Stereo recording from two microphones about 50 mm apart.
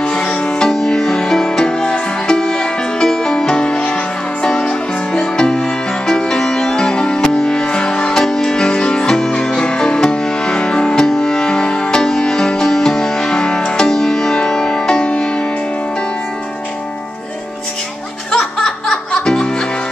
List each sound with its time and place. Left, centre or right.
0.1 s music: centre
18.6 s music: centre